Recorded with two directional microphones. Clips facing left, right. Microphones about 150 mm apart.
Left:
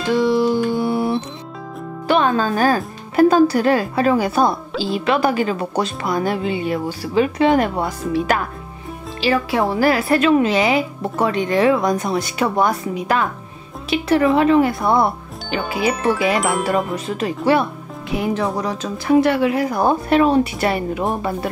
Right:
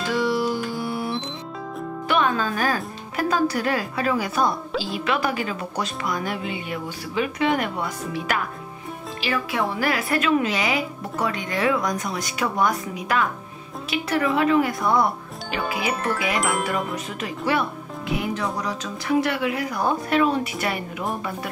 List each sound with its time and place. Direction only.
0.1 s music: 25° left (ahead or behind)
2.0 s a woman's voice: 30° left (ahead or behind)
15.8 s speech: centre (ahead or behind)
16.6 s a woman's voice: 30° left (ahead or behind)